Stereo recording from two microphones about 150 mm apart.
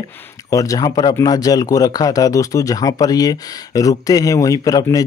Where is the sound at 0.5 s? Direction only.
20° left (ahead or behind).